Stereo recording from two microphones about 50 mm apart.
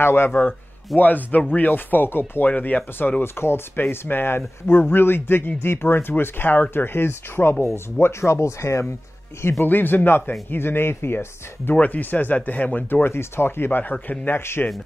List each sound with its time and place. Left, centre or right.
0.0 s speech: left
9.4 s speech: left
9.7 s speech: left
11.7 s speech: left
13.1 s speech: left